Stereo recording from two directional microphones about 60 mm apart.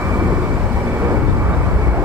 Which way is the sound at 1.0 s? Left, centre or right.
Right.